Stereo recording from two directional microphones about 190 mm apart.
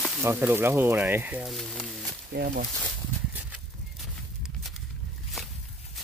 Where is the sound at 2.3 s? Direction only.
55° right (ahead or behind).